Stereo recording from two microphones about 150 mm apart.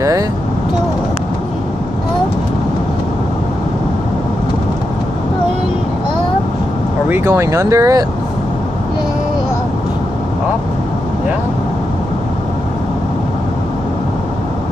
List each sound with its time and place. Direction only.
7.1 s speech: 15° right (ahead or behind)